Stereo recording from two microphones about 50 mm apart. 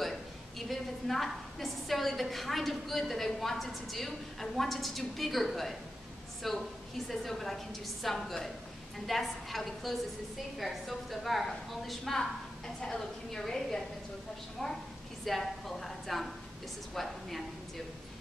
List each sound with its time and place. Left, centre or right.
0.0 s a woman's voice: centre
15.2 s a woman's voice: centre